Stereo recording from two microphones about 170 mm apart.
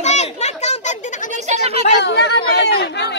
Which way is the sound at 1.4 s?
40° right (ahead or behind).